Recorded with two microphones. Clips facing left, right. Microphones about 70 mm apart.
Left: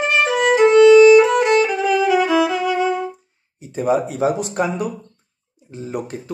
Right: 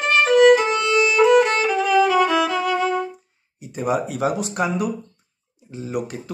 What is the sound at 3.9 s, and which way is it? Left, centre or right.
A man's voice, left.